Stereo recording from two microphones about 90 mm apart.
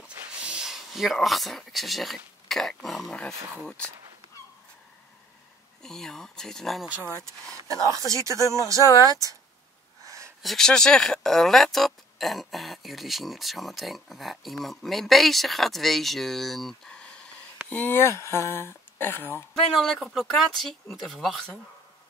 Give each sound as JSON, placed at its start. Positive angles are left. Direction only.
{"t": 0.4, "sound": "speech", "side_deg": -10}
{"t": 2.4, "sound": "throat clearing", "side_deg": 5}
{"t": 3.6, "sound": "speech", "side_deg": 10}
{"t": 5.8, "sound": "speech", "side_deg": 5}
{"t": 8.1, "sound": "speech", "side_deg": -35}
{"t": 10.0, "sound": "a sound", "side_deg": -35}
{"t": 10.4, "sound": "speech", "side_deg": 5}
{"t": 17.6, "sound": "speech", "side_deg": 20}
{"t": 19.7, "sound": "speech", "side_deg": 0}